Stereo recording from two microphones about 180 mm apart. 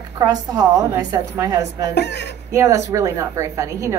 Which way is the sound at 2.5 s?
15° right (ahead or behind).